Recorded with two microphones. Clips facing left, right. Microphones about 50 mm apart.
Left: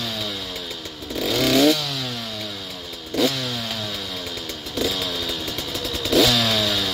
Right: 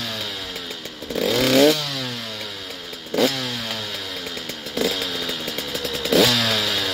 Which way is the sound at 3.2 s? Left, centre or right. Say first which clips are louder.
Even; right.